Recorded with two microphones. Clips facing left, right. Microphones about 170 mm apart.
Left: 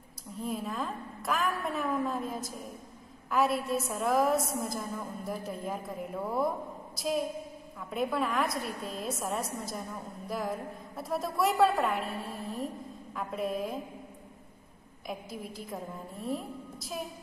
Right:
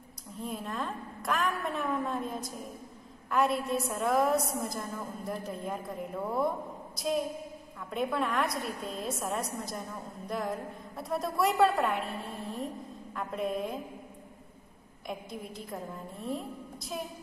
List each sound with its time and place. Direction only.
0.4 s a woman's voice: centre (ahead or behind)
15.0 s a woman's voice: centre (ahead or behind)